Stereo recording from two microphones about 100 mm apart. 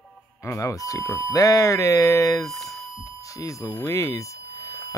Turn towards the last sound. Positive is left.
turn(degrees=30)  # may be behind; listen again after turning